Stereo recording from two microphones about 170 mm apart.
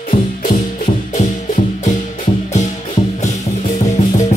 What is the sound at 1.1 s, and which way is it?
Music, 45° left (ahead or behind).